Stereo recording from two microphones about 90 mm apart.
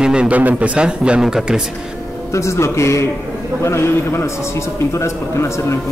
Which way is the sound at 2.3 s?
35° left (ahead or behind).